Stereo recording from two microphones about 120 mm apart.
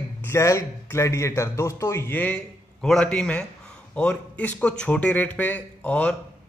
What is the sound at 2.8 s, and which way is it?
A man's voice, 5° left (ahead or behind).